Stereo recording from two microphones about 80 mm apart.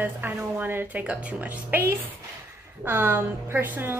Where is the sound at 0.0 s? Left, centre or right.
Right.